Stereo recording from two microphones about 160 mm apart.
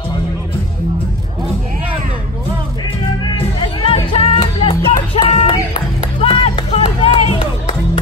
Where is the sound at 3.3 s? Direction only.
35° left (ahead or behind).